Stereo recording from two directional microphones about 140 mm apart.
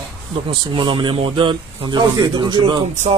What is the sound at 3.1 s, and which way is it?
Speech, 50° right (ahead or behind).